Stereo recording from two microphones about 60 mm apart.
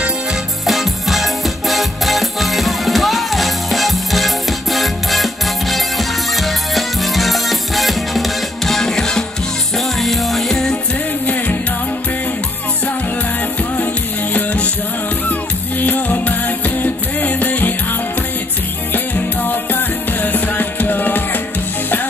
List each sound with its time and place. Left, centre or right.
0.7 s music: centre
14.3 s music: left
15.8 s music: left
19.1 s music: left